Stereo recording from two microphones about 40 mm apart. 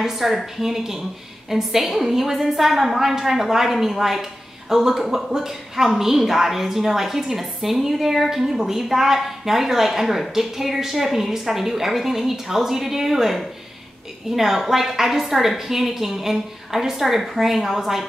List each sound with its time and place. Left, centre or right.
0.0 s a woman's voice: centre